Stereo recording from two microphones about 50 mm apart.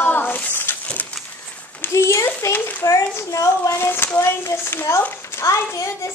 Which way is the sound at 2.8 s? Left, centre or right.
Left.